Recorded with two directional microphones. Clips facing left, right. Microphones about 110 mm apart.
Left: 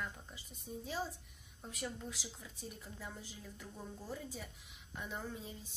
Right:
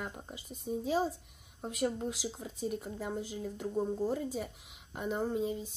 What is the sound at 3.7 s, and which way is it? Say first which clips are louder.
Speech: right 18 dB; 45° right (ahead or behind).